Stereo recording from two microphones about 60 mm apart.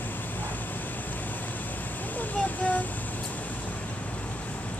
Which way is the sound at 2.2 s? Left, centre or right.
Left.